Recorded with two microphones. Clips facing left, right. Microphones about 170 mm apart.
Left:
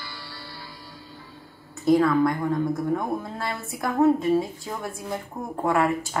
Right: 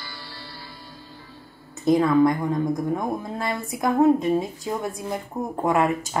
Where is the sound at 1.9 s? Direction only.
20° right (ahead or behind).